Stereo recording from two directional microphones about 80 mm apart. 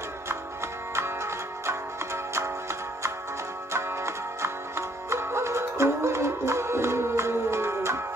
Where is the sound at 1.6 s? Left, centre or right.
Right.